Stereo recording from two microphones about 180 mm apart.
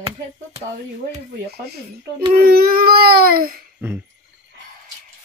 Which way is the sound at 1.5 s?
60° right (ahead or behind).